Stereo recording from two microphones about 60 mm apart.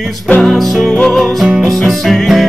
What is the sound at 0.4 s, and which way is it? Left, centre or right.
Music, centre.